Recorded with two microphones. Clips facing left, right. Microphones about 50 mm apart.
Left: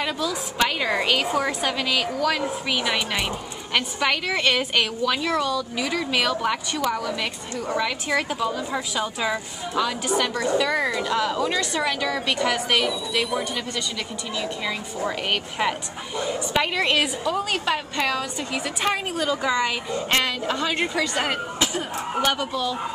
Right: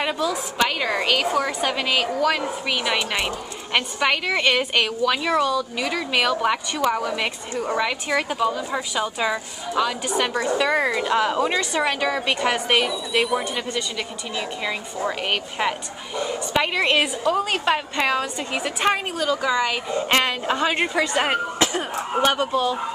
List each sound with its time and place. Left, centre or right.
0.0 s a woman's voice: centre
0.6 s a woman's voice: centre
1.7 s a woman's voice: centre
8.1 s a woman's voice: centre
15.0 s a woman's voice: centre
19.1 s a woman's voice: centre
19.9 s a woman's voice: centre